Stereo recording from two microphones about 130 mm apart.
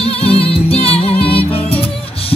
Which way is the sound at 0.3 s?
45° left (ahead or behind).